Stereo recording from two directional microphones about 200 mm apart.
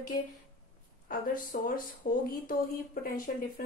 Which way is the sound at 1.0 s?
45° left (ahead or behind).